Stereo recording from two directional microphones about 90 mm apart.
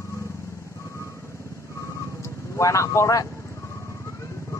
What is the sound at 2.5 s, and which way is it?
Speech, 35° left (ahead or behind).